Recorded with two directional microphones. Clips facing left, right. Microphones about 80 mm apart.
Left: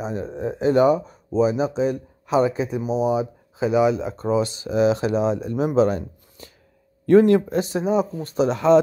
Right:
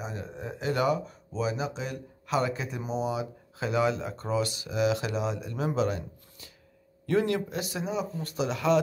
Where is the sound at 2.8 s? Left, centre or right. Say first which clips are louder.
Left 9 dB; centre.